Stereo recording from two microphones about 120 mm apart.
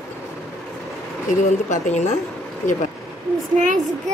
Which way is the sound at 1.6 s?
85° left.